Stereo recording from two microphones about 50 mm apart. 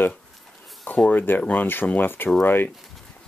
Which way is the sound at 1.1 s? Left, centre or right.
Left.